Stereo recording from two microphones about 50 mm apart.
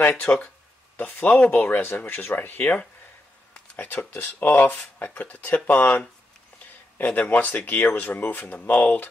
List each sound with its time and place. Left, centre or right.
0.3 s speech: left
1.3 s speech: centre
1.6 s speech: left